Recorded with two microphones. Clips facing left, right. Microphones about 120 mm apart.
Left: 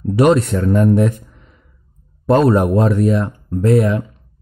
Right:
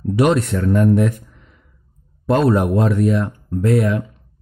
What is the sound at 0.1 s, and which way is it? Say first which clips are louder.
Speech: left 3 dB; 40° left (ahead or behind).